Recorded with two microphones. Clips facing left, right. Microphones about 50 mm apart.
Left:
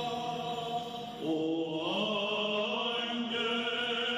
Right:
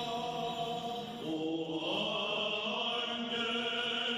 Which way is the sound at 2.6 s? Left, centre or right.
Centre.